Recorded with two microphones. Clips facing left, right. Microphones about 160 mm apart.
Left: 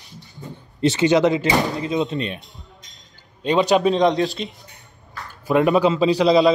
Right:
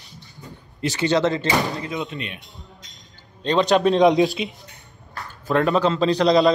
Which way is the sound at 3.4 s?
5° left (ahead or behind).